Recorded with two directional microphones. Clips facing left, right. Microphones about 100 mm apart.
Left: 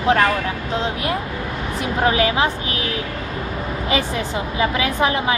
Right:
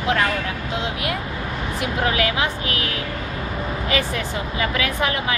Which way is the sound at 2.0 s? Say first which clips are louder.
Left 5 dB; 30° left (ahead or behind).